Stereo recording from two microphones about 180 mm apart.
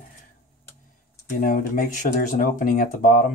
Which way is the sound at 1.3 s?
50° left (ahead or behind).